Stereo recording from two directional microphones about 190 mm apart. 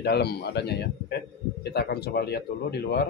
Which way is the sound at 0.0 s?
60° left (ahead or behind).